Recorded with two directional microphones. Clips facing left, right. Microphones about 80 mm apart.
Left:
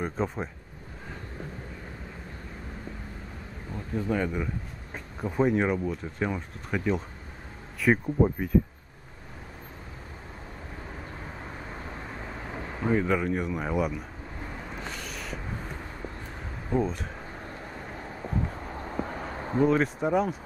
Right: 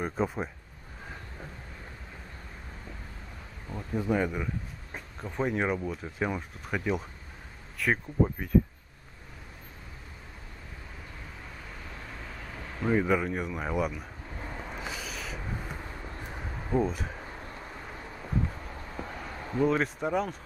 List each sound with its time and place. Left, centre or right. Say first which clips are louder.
0.0 s speech: even; centre
3.7 s speech: even; centre
5.2 s speech: left 5 dB; centre
11.7 s vehicle: left 5 dB; left
12.9 s speech: left 1 dB; centre
14.8 s a sound: even; centre
16.7 s speech: left 1 dB; centre
18.9 s a sound: left 5 dB; left
19.6 s speech: left 3 dB; centre